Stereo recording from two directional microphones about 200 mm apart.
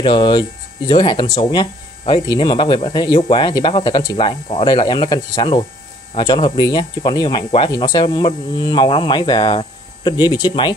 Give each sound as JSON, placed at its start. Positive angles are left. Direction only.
{"t": 0.0, "sound": "speech", "side_deg": 25}